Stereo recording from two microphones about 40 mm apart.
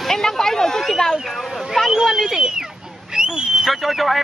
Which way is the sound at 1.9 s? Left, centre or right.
Centre.